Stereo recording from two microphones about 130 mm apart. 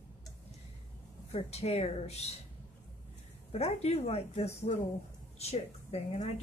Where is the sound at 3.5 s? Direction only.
55° left (ahead or behind).